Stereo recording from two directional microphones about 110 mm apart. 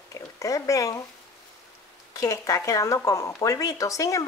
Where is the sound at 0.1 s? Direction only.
30° left (ahead or behind).